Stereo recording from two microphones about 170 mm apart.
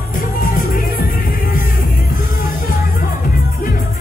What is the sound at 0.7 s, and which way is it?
Music, 55° left (ahead or behind).